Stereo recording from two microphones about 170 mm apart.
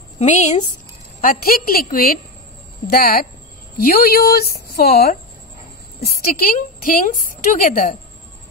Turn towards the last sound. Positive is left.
turn(degrees=50)  # may be behind; listen again after turning